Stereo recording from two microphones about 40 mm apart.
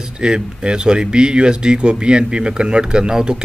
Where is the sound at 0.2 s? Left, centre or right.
Right.